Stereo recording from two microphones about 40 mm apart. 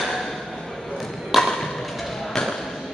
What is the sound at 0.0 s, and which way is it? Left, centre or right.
Ping, centre.